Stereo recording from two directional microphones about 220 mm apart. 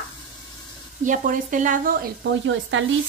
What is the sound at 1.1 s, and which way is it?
Speech, 35° right (ahead or behind).